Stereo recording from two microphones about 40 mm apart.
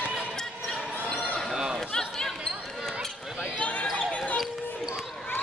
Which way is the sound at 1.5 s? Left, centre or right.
Centre.